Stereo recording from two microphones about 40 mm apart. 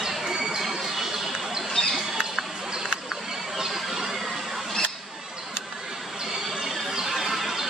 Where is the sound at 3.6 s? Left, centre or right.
Centre.